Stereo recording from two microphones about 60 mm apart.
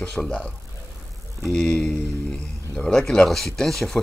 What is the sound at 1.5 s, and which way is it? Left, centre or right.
Speech, centre.